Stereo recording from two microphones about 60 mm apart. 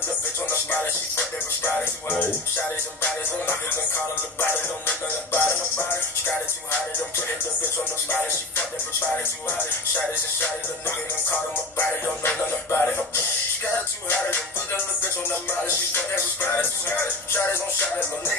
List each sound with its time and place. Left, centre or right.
0.5 s music: left
3.4 s music: left
8.1 s music: left
13.7 s music: left
15.9 s music: left